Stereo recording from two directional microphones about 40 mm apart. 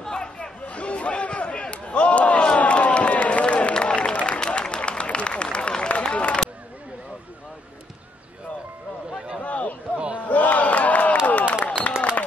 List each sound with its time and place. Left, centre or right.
0.0 s chatter: left
0.7 s a sound: left
9.4 s a sound: left
9.9 s battle cry: right
10.2 s crowd: left
12.0 s run: left